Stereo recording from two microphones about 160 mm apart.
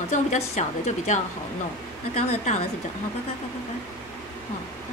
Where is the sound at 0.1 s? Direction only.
45° left (ahead or behind).